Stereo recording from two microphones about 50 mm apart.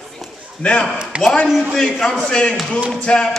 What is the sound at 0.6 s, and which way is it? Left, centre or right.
Speech, left.